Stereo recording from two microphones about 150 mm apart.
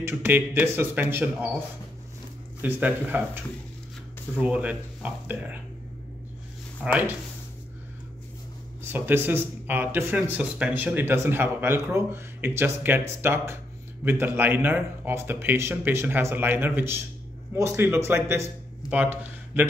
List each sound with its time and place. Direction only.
0.0 s speech: 15° right (ahead or behind)
2.6 s speech: 10° right (ahead or behind)
4.4 s speech: 10° right (ahead or behind)
6.8 s speech: 10° right (ahead or behind)
8.8 s speech: 15° right (ahead or behind)